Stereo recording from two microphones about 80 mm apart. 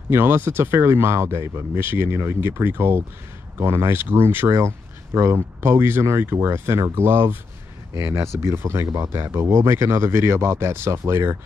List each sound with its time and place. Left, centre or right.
0.1 s speech: right